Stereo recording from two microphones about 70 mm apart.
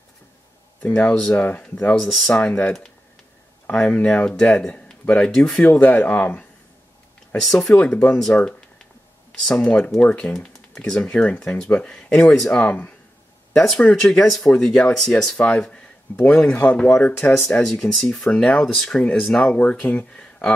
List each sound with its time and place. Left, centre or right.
0.8 s speech: left
1.1 s speech: centre
2.3 s speech: centre
5.6 s speech: centre
7.4 s speech: centre
7.7 s speech: centre
12.5 s speech: left
13.5 s speech: centre
17.6 s speech: centre
18.3 s speech: centre
18.7 s speech: centre
18.9 s speech: centre